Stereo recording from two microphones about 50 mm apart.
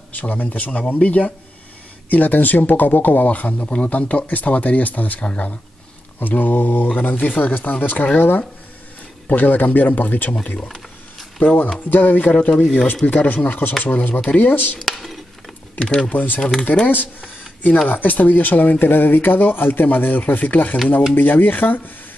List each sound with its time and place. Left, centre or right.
0.1 s speech: left
6.1 s speech: left
9.3 s speech: left
12.4 s speech: left
14.9 s speech: centre
15.8 s speech: left